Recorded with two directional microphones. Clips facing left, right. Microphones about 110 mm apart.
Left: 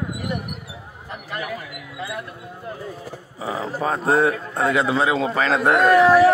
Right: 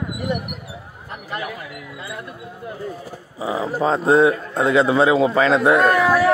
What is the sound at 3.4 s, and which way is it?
A man's voice, 15° right (ahead or behind).